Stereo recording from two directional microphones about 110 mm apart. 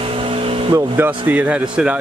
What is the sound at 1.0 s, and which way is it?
Speech, 20° right (ahead or behind).